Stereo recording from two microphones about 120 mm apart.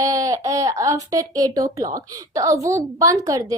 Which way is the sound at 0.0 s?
30° right (ahead or behind).